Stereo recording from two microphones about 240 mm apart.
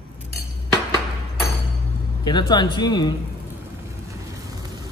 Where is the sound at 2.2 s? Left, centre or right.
Centre.